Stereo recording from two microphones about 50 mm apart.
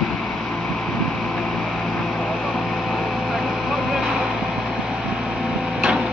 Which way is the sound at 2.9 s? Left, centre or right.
Centre.